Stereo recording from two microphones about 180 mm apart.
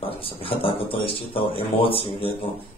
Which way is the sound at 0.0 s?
30° left (ahead or behind).